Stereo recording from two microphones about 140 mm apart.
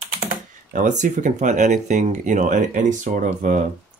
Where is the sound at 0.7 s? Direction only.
60° right (ahead or behind).